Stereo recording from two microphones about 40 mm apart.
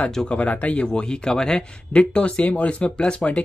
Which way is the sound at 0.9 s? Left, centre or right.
Centre.